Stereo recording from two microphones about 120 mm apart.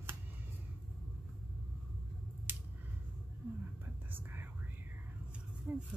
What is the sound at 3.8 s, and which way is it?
Whispering, 15° right (ahead or behind).